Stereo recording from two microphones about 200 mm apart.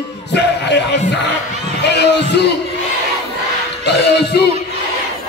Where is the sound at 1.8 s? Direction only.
55° left (ahead or behind).